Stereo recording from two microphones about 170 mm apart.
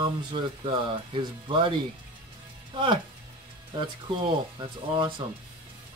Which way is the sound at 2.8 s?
30° right (ahead or behind).